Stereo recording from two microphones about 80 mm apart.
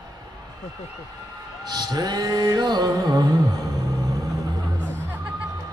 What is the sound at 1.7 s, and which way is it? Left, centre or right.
Music, right.